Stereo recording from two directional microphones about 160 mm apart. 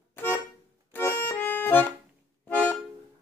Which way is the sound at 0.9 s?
10° left (ahead or behind).